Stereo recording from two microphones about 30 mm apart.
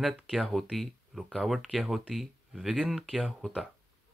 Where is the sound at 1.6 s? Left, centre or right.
Centre.